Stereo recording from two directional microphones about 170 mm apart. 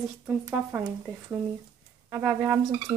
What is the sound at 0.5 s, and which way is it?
Speech, 15° right (ahead or behind).